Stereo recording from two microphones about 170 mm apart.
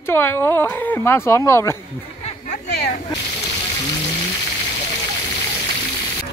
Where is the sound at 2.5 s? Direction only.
75° left (ahead or behind).